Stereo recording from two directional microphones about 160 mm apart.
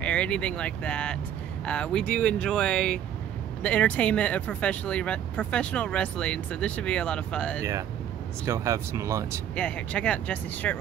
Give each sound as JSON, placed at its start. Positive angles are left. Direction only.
{"t": 0.0, "sound": "speech", "side_deg": 5}
{"t": 8.5, "sound": "speech", "side_deg": -20}
{"t": 9.6, "sound": "speech", "side_deg": 10}